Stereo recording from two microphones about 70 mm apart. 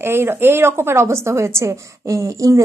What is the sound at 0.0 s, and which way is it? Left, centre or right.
A woman's voice, right.